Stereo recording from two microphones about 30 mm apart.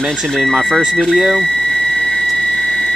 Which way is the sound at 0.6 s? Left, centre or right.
Centre.